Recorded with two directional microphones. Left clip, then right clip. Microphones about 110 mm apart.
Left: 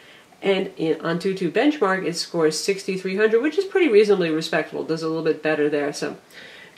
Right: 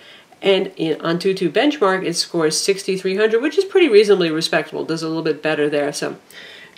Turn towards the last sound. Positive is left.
turn(degrees=-25)  # may be behind; listen again after turning